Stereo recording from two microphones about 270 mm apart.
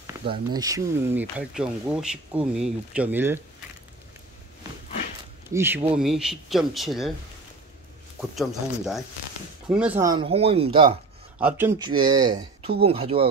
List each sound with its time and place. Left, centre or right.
0.0 s speech: centre
5.5 s speech: centre
8.2 s speech: centre
11.3 s speech: centre